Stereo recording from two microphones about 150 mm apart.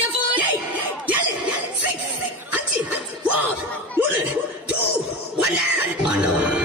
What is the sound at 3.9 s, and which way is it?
Cough, 10° right (ahead or behind).